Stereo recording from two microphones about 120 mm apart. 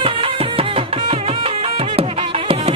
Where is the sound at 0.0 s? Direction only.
50° right (ahead or behind).